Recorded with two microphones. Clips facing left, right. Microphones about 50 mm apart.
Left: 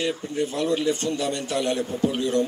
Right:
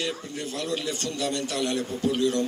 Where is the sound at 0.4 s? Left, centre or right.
Centre.